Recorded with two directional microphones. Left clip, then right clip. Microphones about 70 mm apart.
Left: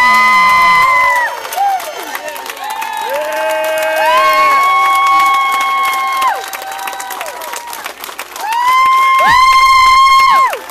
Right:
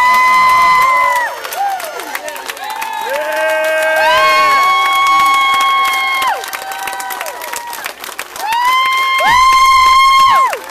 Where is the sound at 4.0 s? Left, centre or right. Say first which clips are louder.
Left 1 dB; right.